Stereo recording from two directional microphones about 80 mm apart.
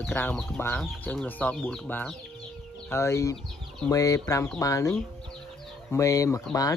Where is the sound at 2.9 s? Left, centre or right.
Left.